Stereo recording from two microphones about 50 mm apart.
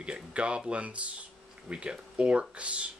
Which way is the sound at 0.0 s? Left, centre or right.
Right.